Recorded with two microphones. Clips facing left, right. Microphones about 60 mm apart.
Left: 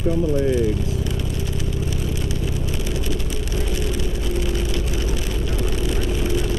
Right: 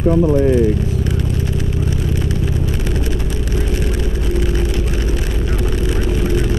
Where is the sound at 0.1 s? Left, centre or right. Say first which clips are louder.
Right 6 dB; right.